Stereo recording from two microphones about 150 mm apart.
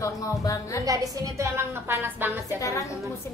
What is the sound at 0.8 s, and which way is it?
A woman's voice, 25° right (ahead or behind).